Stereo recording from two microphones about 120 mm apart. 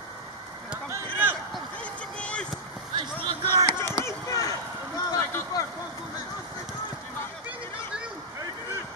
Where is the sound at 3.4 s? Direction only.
20° left (ahead or behind).